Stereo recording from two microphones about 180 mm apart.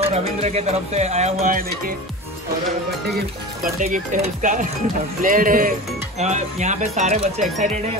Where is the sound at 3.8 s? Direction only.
45° right (ahead or behind).